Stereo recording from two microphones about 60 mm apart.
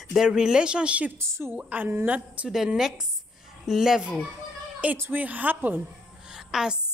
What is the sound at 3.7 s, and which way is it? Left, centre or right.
Speech, centre.